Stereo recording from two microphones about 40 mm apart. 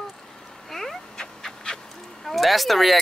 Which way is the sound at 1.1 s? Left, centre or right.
Centre.